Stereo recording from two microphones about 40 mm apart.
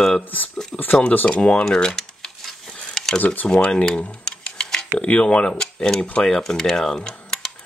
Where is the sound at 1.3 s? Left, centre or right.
Left; by 3.1 s centre.